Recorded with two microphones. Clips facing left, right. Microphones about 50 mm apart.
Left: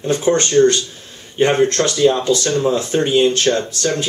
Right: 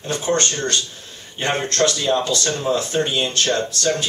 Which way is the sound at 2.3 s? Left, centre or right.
Left.